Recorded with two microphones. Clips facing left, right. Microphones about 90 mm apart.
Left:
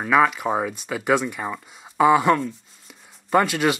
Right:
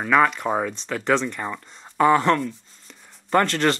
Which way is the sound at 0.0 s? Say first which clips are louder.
Even; 5° left (ahead or behind).